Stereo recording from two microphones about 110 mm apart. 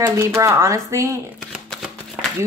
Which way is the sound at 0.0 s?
25° right (ahead or behind).